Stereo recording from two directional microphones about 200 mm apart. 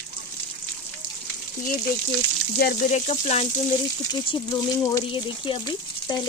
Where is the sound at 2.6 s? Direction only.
45° left (ahead or behind).